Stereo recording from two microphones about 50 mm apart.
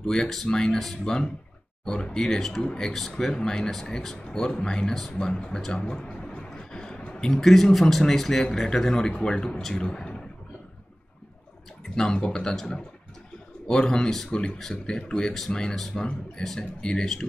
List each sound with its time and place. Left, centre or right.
0.0 s speech: centre
5.7 s a sound: centre
7.2 s speech: centre
11.9 s speech: centre
16.0 s speech: centre